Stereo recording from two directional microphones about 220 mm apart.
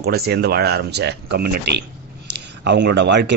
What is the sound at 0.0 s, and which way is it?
A man's voice, 45° right (ahead or behind).